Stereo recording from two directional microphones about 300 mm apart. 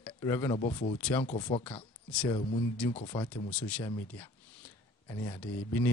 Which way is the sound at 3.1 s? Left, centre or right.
Centre.